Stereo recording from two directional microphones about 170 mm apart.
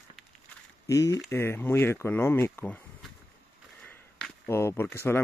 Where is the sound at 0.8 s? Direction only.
20° left (ahead or behind).